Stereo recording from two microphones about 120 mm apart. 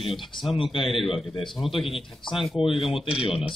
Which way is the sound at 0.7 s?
Centre (ahead or behind).